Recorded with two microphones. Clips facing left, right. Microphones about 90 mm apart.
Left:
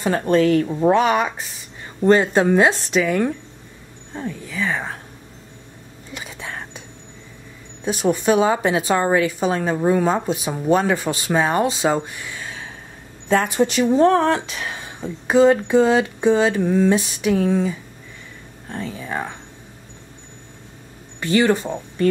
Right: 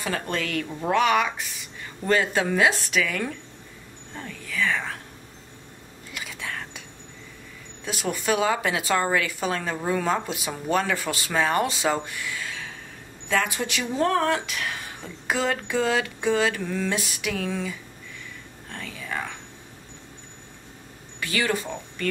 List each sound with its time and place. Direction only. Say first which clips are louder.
0.0 s a woman's voice: left 11 dB; 30° left (ahead or behind)
6.1 s whispering: left 2 dB; 25° left (ahead or behind)
7.8 s a woman's voice: left 9 dB; 25° left (ahead or behind)
21.2 s speech: left 9 dB; 30° left (ahead or behind)